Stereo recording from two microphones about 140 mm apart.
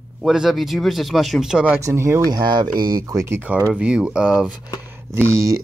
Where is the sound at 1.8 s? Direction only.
20° right (ahead or behind).